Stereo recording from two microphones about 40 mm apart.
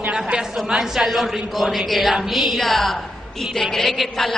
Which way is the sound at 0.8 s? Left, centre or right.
Centre.